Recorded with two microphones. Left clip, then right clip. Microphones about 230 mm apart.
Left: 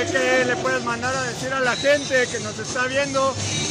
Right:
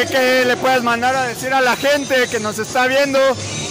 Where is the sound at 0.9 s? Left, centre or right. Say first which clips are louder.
Right 8 dB; right.